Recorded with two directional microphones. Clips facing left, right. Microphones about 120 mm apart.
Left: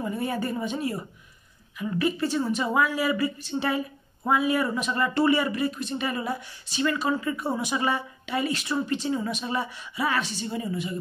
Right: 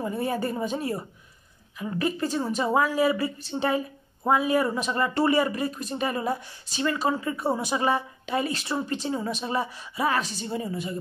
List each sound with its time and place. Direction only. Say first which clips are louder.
0.0 s speech: right 1 dB; 40° right (ahead or behind)